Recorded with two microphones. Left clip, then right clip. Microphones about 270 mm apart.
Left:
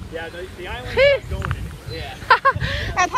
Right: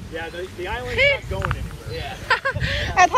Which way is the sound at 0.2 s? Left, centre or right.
Right.